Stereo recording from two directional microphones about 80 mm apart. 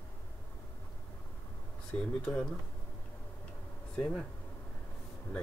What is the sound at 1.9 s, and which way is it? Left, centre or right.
Speech, centre.